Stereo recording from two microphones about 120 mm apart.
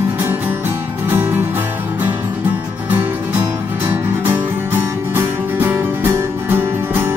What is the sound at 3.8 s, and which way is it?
Music, 15° right (ahead or behind).